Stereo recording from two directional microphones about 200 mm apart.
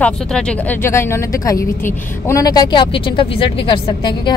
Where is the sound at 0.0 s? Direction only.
5° left (ahead or behind).